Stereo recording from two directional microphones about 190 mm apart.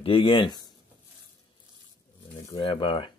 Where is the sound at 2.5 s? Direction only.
30° left (ahead or behind).